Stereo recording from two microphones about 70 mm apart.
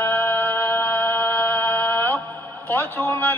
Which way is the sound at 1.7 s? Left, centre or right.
Left.